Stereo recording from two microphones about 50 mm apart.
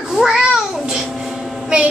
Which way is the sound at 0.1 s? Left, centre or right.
Centre.